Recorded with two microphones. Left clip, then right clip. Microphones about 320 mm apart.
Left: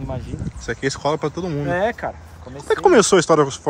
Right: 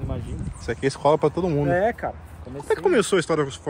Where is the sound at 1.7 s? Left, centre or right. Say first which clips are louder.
Left 4 dB; left.